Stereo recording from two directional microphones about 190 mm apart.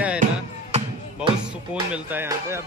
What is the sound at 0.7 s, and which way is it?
Music, 30° right (ahead or behind).